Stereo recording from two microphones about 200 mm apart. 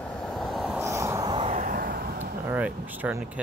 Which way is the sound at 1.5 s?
45° right (ahead or behind).